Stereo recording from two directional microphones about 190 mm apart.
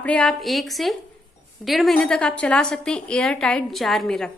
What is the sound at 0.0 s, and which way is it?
A woman's voice, 5° left (ahead or behind).